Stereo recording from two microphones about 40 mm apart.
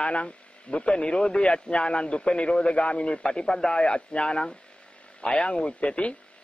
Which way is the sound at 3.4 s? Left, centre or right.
Centre.